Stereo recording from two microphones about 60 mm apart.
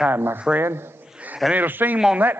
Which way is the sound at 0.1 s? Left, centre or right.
Right.